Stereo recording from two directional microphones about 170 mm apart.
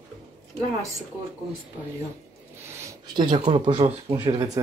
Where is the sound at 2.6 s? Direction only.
15° right (ahead or behind).